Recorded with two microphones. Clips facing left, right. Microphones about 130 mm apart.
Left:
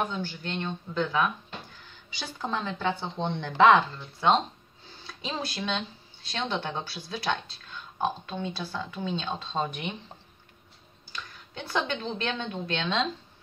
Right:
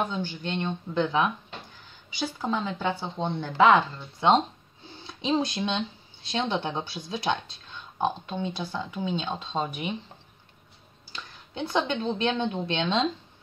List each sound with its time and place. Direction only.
0.1 s speech: 20° right (ahead or behind)
2.0 s speech: 10° right (ahead or behind)
5.0 s a sound: 20° right (ahead or behind)
5.5 s speech: 20° right (ahead or behind)
11.1 s a woman's voice: 25° right (ahead or behind)